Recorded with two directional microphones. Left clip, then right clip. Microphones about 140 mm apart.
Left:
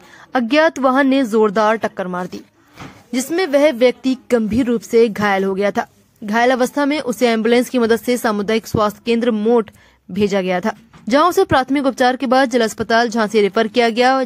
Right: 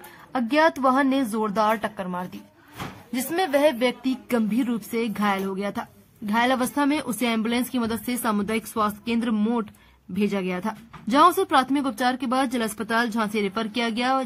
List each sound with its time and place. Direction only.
0.3 s a woman's voice: 35° left (ahead or behind)
10.1 s a woman's voice: 50° left (ahead or behind)